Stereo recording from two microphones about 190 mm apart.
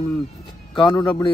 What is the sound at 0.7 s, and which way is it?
Speech, 25° left (ahead or behind).